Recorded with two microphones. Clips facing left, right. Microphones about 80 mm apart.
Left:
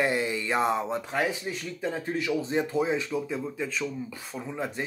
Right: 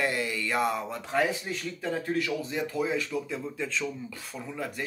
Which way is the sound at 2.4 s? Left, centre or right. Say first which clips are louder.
Left 4 dB; left.